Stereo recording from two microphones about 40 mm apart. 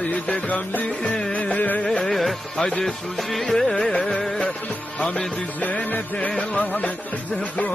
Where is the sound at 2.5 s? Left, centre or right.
Left.